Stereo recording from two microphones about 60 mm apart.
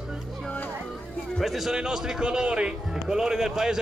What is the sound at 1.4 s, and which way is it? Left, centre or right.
A man's voice, centre.